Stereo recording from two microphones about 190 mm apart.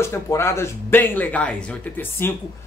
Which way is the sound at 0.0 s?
15° left (ahead or behind).